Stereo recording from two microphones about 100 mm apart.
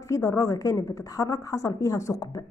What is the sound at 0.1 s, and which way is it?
A woman's voice, 30° left (ahead or behind).